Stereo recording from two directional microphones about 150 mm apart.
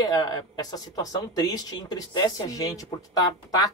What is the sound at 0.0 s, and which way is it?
Speech, 25° left (ahead or behind).